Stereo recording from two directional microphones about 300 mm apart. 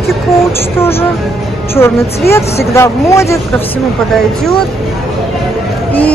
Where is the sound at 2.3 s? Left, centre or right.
Centre.